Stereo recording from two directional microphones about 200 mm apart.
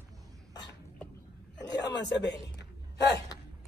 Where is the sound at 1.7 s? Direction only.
60° left (ahead or behind).